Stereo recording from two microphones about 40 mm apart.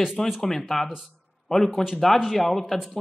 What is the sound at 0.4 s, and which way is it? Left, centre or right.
Speech, centre.